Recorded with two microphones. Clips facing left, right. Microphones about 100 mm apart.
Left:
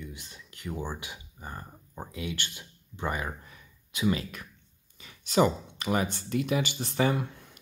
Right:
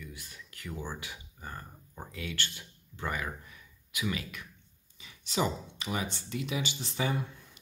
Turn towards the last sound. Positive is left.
turn(degrees=65)  # may be behind; listen again after turning